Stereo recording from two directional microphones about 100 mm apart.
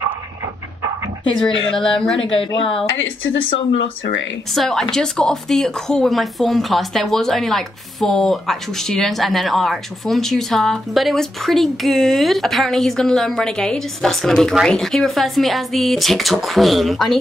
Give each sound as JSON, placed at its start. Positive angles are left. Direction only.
{"t": 1.8, "sound": "speech", "side_deg": 5}
{"t": 2.3, "sound": "a woman's voice", "side_deg": 65}
{"t": 4.5, "sound": "speech", "side_deg": 5}